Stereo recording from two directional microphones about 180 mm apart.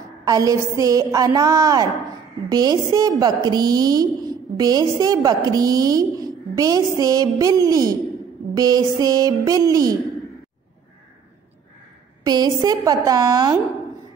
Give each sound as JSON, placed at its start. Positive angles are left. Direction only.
{"t": 0.3, "sound": "a woman's voice", "side_deg": -20}
{"t": 12.2, "sound": "a woman's voice", "side_deg": -20}